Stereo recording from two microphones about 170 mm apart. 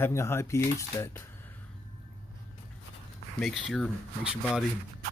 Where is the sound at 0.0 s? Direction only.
15° left (ahead or behind).